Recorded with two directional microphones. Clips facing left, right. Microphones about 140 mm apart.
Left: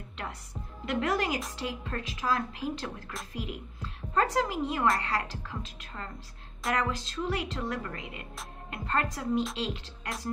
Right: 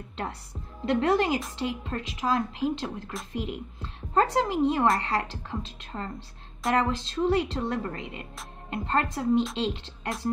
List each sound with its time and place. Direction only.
0.2 s a woman's voice: 30° right (ahead or behind)